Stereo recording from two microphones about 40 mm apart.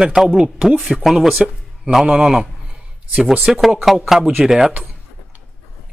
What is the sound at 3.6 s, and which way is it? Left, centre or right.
Speech, centre.